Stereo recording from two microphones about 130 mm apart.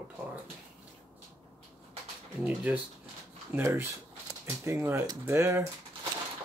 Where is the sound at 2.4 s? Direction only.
10° right (ahead or behind).